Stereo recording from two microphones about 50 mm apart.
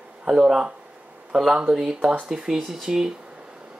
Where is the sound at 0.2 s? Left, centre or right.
Centre.